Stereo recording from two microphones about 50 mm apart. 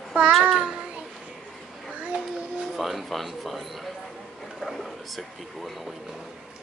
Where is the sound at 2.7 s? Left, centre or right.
Centre.